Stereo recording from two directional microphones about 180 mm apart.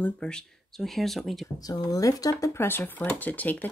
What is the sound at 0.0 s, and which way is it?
Speech, 5° left (ahead or behind).